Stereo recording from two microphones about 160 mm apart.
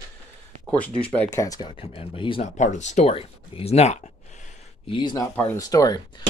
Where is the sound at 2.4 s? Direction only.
50° left (ahead or behind).